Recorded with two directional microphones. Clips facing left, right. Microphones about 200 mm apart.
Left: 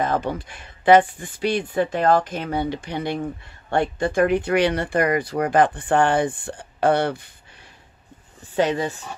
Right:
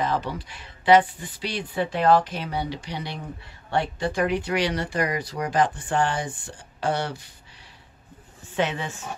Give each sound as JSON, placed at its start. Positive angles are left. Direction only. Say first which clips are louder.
{"t": 0.0, "sound": "speech", "louder": "left 3 dB", "side_deg": 50}
{"t": 8.5, "sound": "a woman's voice", "louder": "left 5 dB", "side_deg": 40}